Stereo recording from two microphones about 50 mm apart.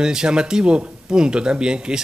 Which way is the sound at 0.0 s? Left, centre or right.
Centre.